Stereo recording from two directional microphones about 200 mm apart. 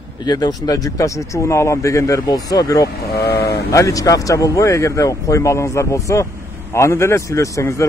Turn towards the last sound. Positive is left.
turn(degrees=15)  # may be behind; listen again after turning